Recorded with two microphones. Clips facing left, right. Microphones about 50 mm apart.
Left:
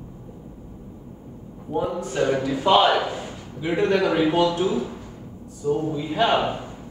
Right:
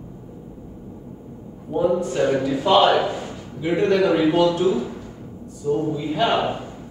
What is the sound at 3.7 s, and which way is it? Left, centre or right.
Speech, centre.